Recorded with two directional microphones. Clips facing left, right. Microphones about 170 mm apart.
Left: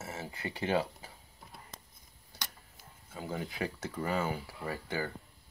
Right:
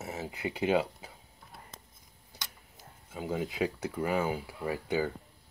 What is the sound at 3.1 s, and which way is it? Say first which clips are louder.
Speech: right 5 dB; 15° right (ahead or behind).